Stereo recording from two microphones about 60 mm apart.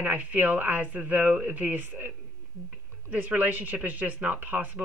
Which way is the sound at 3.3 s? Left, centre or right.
Right.